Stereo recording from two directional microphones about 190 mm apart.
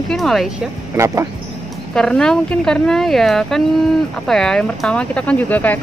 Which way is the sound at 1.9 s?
5° left (ahead or behind).